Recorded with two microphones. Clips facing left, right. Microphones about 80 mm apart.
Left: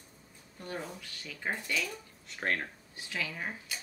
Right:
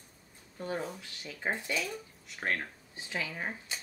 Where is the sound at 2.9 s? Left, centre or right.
Right.